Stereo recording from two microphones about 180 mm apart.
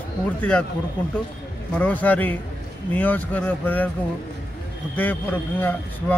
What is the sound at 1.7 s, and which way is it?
Speech, 10° left (ahead or behind).